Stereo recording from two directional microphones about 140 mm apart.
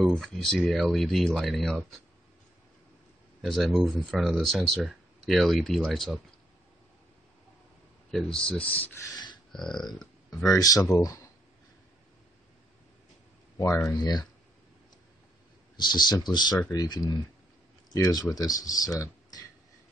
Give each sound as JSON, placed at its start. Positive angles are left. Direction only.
{"t": 0.0, "sound": "speech", "side_deg": 5}
{"t": 3.4, "sound": "speech", "side_deg": 0}
{"t": 8.4, "sound": "speech", "side_deg": 10}
{"t": 9.1, "sound": "a sound", "side_deg": 30}
{"t": 9.5, "sound": "speech", "side_deg": 5}
{"t": 10.4, "sound": "speech", "side_deg": 25}
{"t": 13.6, "sound": "speech", "side_deg": 20}
{"t": 15.7, "sound": "speech", "side_deg": 30}